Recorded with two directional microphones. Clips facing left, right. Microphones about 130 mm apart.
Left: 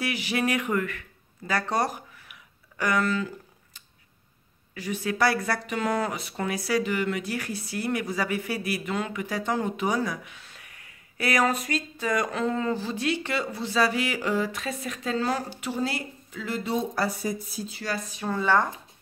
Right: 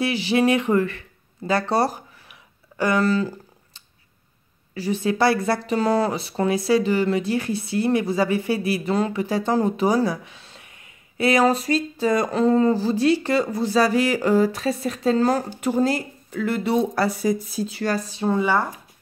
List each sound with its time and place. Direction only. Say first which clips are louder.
0.0 s speech: right 8 dB; 30° right (ahead or behind)
16.4 s speech: right 7 dB; 65° right (ahead or behind); by 17.8 s 85° right
17.8 s speech: right 7 dB; 35° right (ahead or behind)
18.4 s speech: left 1 dB; 10° right (ahead or behind)